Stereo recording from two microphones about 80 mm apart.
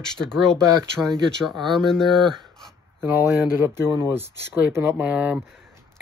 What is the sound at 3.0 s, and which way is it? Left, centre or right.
Speech, right.